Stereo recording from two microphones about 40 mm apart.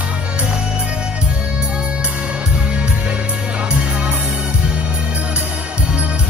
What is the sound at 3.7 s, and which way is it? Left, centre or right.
Music, right.